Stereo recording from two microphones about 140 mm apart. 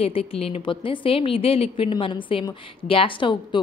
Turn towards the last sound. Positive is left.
turn(degrees=35)  # may be behind; listen again after turning